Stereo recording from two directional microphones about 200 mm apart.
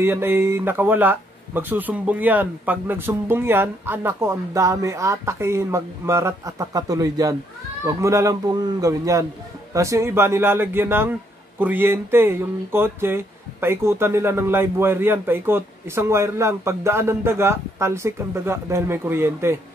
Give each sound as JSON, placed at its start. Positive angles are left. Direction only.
{"t": 0.0, "sound": "speech", "side_deg": -10}